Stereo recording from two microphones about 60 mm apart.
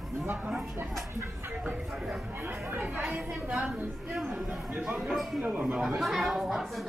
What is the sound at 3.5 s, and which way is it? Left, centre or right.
Speech, centre.